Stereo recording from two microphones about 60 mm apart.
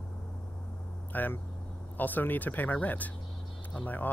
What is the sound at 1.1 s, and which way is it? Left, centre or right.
Speech, left.